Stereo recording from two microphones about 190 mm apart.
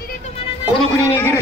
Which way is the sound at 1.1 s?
10° left (ahead or behind).